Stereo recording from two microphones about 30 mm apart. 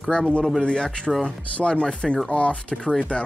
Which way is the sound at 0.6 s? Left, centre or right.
Left.